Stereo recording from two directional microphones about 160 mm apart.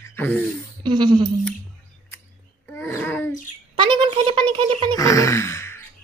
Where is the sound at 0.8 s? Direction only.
30° right (ahead or behind).